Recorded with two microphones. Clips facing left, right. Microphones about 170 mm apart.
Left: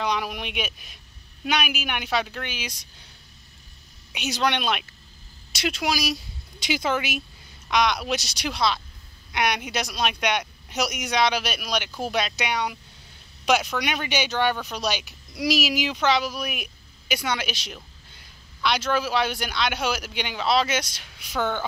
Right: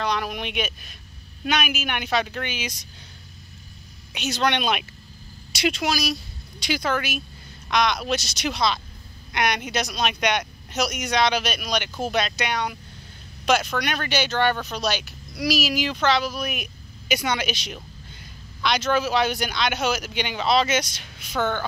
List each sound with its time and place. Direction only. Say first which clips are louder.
0.0 s speech: right 1 dB; 10° left (ahead or behind)
4.1 s a woman's voice: right 1 dB; 10° left (ahead or behind)
13.7 s a child's voice: right 1 dB; 15° left (ahead or behind)